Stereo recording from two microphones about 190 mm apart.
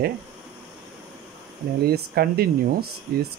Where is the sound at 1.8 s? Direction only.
55° right (ahead or behind).